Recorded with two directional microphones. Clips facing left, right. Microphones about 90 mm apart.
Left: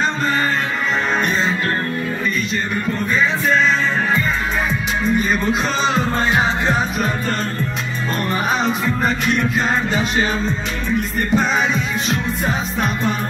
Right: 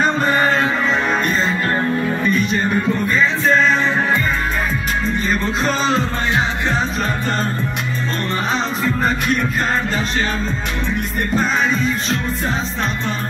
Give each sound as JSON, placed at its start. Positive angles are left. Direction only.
{"t": 5.0, "sound": "music", "side_deg": 5}
{"t": 6.3, "sound": "music", "side_deg": 15}
{"t": 8.8, "sound": "music", "side_deg": 0}
{"t": 11.3, "sound": "music", "side_deg": 5}